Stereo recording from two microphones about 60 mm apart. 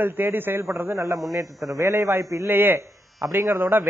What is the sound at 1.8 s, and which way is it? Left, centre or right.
Speech, right.